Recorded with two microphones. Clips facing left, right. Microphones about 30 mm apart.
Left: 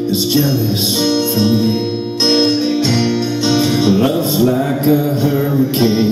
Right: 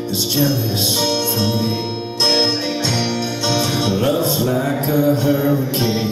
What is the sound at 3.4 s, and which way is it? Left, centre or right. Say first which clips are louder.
Music: left 5 dB; centre.